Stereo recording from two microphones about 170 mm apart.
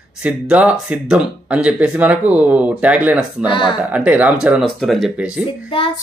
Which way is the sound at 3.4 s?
30° left (ahead or behind).